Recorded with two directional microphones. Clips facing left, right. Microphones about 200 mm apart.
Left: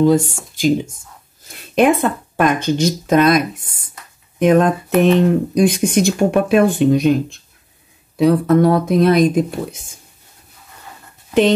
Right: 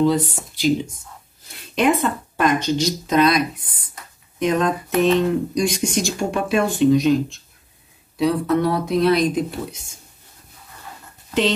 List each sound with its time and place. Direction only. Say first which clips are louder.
0.0 s speech: left 5 dB; 45° left (ahead or behind)
1.8 s speech: left 5 dB; 55° left (ahead or behind)